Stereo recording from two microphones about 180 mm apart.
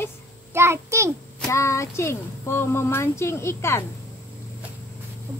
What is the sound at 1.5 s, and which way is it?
Speech, 15° left (ahead or behind).